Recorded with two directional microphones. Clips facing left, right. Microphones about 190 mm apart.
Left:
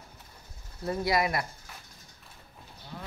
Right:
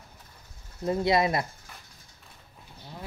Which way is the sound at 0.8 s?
20° right (ahead or behind).